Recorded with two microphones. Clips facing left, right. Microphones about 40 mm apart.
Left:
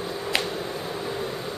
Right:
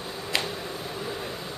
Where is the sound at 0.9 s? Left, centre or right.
Left.